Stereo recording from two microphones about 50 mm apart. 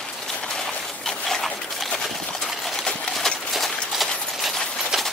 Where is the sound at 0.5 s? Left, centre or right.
Centre.